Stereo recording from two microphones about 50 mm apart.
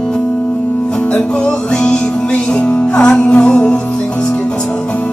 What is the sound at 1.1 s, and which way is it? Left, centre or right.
Music, centre.